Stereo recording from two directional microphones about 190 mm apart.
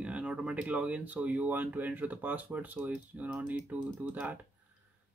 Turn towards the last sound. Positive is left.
turn(degrees=-10)  # may be behind; listen again after turning